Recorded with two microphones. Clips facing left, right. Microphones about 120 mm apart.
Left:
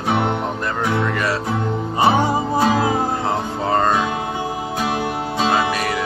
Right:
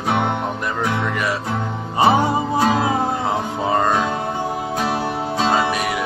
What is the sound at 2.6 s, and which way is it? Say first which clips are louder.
Music: left 1 dB; centre (ahead or behind).